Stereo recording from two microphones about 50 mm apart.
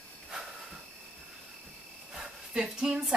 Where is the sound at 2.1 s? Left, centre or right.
Centre.